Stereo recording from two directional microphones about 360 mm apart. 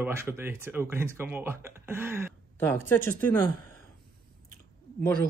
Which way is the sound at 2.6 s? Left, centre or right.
Centre.